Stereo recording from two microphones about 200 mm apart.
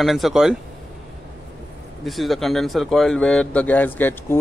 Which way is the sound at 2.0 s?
Centre (ahead or behind).